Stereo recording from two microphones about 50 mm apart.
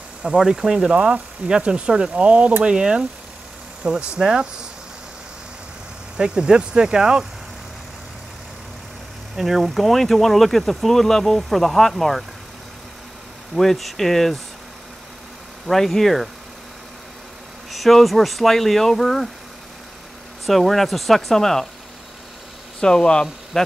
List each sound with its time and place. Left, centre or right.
0.4 s speech: centre
4.1 s speech: centre
6.1 s speech: centre
9.4 s speech: centre
13.6 s speech: centre
15.6 s speech: centre
17.6 s speech: centre
20.4 s speech: centre
22.8 s speech: centre